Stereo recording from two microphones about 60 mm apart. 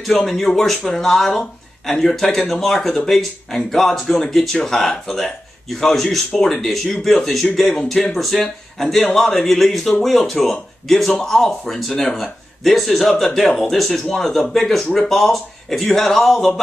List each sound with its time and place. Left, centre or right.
0.0 s speech: centre